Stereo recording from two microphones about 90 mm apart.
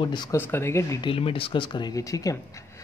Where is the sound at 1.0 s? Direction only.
90° left; by 1.9 s 55° left (ahead or behind).